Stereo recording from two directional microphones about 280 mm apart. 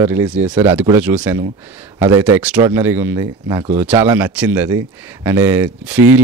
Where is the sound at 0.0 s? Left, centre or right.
Centre.